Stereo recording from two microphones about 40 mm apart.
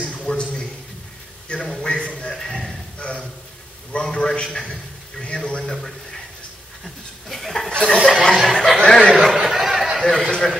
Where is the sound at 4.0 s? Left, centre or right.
Centre.